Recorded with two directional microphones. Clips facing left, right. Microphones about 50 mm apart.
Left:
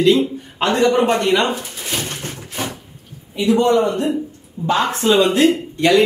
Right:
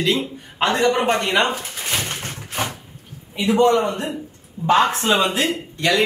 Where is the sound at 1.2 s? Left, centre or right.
Right.